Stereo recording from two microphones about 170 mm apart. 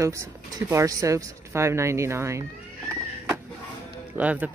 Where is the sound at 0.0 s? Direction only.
15° right (ahead or behind).